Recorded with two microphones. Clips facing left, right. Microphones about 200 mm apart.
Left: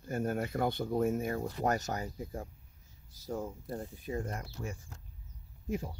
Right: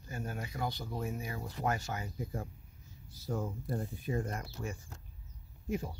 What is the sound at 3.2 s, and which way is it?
Speech, 20° left (ahead or behind).